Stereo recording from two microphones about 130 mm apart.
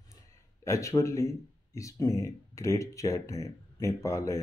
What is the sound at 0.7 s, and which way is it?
Speech, 25° left (ahead or behind).